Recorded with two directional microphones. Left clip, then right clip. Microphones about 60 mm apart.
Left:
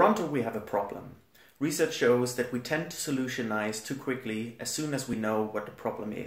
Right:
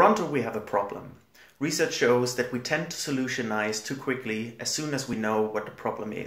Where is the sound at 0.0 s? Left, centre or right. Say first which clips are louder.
Right 3 dB; left.